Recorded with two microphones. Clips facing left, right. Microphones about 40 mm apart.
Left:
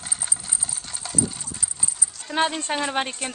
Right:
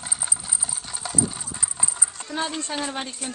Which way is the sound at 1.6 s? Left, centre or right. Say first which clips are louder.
Right 3 dB; right.